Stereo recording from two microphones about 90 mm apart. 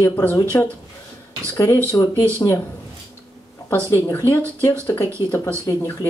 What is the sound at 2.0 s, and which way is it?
Speech, 45° left (ahead or behind).